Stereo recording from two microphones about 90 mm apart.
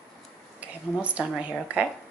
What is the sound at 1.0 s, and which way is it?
Speech, 15° right (ahead or behind).